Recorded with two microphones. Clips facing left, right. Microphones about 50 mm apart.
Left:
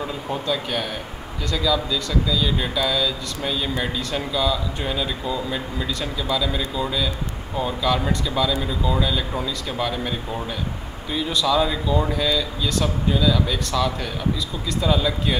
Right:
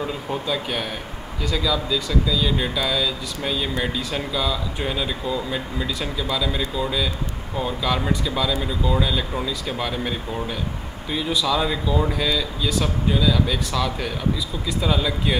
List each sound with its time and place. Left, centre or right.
0.0 s speech: centre